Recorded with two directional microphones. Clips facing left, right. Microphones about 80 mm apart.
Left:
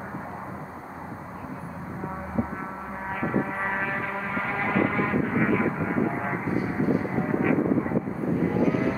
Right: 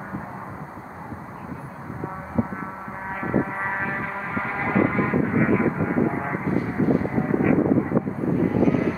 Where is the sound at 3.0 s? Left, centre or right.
Right.